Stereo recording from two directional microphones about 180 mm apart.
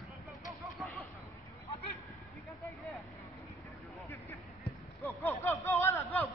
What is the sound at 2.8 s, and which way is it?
Vehicle, centre (ahead or behind).